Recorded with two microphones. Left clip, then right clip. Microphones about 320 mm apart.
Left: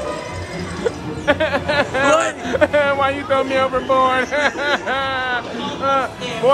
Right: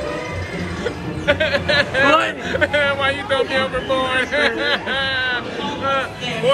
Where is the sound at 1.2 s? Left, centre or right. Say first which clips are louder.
Even; left.